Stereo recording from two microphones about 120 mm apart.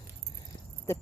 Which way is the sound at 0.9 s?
25° left (ahead or behind).